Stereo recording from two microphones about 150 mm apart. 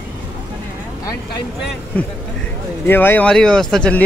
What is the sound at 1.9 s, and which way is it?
Speech, 10° left (ahead or behind).